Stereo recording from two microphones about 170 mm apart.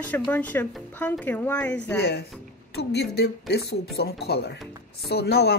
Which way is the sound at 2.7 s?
75° left (ahead or behind).